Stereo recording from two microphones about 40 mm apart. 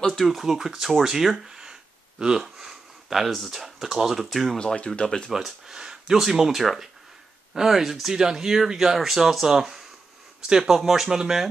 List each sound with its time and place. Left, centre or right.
0.1 s speech: centre
1.0 s a sound: centre
2.4 s speech: centre
4.7 s speech: left
5.0 s speech: centre
5.3 s speech: centre